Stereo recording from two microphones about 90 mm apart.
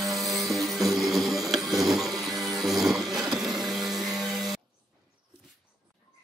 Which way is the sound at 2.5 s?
5° right (ahead or behind).